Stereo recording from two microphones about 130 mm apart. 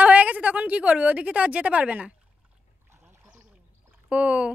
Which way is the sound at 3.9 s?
10° right (ahead or behind).